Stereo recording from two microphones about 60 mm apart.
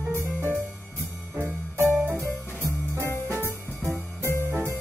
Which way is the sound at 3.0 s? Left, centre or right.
Left.